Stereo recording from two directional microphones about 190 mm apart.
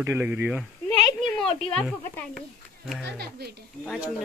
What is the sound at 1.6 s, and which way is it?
Speech, 5° left (ahead or behind).